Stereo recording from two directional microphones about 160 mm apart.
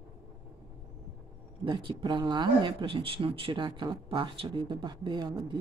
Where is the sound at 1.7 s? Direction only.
30° right (ahead or behind).